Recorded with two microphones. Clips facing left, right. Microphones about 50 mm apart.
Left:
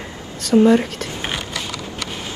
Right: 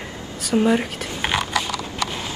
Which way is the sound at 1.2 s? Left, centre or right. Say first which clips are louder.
Right 7 dB; right.